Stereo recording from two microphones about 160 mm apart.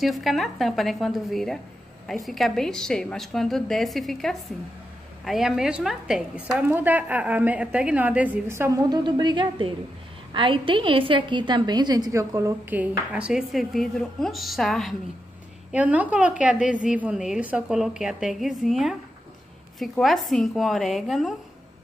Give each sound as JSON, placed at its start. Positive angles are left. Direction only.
{"t": 0.0, "sound": "a woman's voice", "side_deg": 0}
{"t": 15.7, "sound": "a woman's voice", "side_deg": -10}